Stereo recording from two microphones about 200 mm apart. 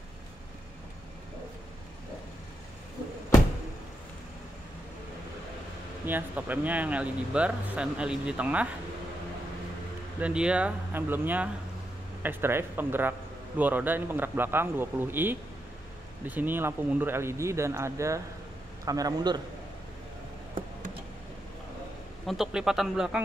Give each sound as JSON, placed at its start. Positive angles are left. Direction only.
{"t": 6.0, "sound": "speech", "side_deg": -10}
{"t": 10.2, "sound": "a man's voice", "side_deg": -5}
{"t": 22.2, "sound": "speech", "side_deg": 0}